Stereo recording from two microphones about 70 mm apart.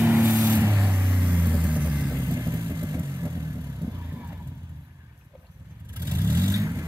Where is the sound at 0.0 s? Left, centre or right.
Right.